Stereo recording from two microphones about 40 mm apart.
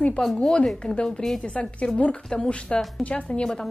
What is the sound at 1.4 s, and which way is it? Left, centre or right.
A woman's voice, left.